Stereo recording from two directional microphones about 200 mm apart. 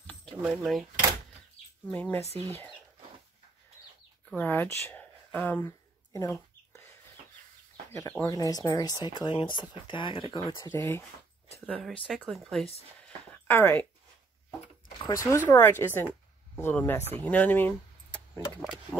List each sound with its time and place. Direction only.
0.0 s a sound: 5° left (ahead or behind)
0.4 s speech: 5° right (ahead or behind)
1.9 s speech: 10° left (ahead or behind)
4.3 s a sound: 10° left (ahead or behind)
8.1 s speech: 15° left (ahead or behind)
10.7 s speech: 10° left (ahead or behind)
11.5 s speech: 5° right (ahead or behind); by 13.8 s 10° left (ahead or behind)
15.0 s speech: 15° left (ahead or behind)
17.2 s keys jangling: 10° left (ahead or behind)
18.6 s speech: centre (ahead or behind)